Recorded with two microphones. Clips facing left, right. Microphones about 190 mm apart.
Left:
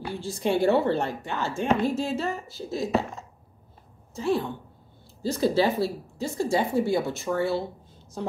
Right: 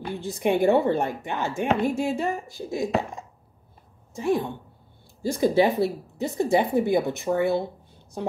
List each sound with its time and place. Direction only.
0.1 s a woman's voice: 15° right (ahead or behind)